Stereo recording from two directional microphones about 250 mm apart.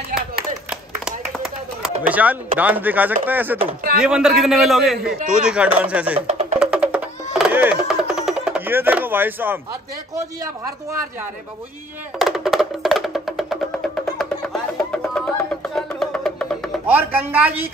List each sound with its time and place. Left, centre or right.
0.1 s a sound: right
0.7 s a sound: centre
4.0 s a man's voice: centre
6.2 s music: right
6.6 s music: centre
10.4 s speech: centre
12.2 s music: centre